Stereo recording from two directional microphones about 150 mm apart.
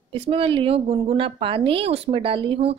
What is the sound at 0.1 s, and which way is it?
A woman's voice, 40° right (ahead or behind).